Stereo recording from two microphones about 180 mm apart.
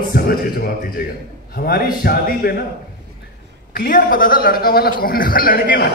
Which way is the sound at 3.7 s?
50° left (ahead or behind).